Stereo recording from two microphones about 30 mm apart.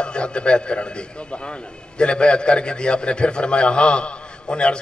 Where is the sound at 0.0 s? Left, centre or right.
Left.